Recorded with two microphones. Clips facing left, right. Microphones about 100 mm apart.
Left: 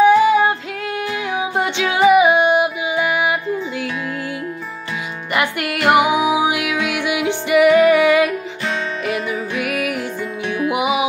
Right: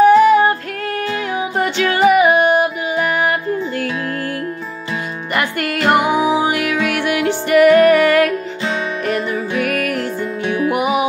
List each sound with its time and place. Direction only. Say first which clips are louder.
0.0 s music: right 3 dB; 15° left (ahead or behind)
5.3 s music: even; 5° left (ahead or behind)